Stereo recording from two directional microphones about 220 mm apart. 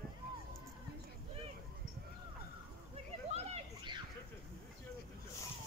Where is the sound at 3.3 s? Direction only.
25° right (ahead or behind).